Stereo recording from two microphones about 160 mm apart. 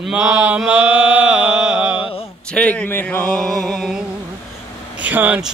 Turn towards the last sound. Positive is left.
turn(degrees=-10)  # may be behind; listen again after turning